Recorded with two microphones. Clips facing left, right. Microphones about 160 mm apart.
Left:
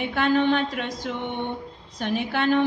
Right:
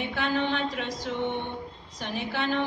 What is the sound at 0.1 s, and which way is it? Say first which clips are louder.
Speech: left 8 dB; 60° left (ahead or behind).